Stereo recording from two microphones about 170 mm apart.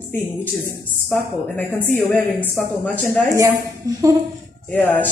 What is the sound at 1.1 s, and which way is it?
Speech, 5° left (ahead or behind).